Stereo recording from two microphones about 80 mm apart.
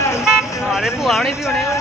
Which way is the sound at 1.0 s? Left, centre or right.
Centre.